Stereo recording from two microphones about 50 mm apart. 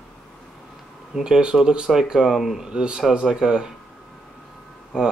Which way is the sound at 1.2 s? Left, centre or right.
Centre.